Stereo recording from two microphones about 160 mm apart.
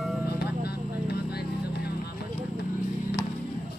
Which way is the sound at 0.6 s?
85° left.